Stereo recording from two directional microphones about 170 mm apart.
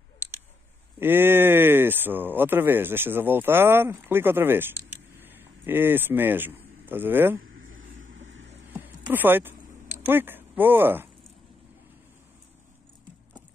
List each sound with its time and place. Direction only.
0.9 s speech: 10° right (ahead or behind)
8.3 s vehicle: 90° right
9.1 s speech: 10° right (ahead or behind)